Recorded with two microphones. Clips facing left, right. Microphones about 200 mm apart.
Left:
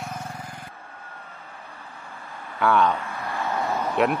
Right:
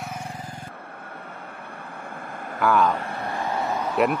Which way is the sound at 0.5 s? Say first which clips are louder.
Right 3 dB; 50° right (ahead or behind).